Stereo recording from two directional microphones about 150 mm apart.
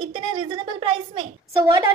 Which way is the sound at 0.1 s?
35° right (ahead or behind).